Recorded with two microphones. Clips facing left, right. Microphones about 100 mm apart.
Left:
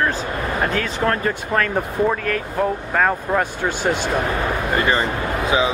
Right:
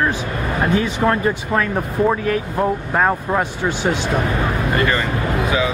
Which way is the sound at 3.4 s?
5° left (ahead or behind).